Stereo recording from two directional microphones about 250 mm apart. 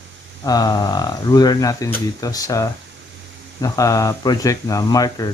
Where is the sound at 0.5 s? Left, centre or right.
Centre.